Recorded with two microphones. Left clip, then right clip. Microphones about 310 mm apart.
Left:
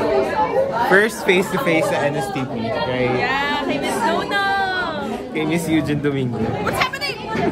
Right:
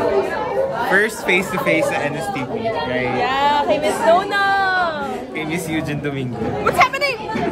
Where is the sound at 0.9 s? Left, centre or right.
Centre.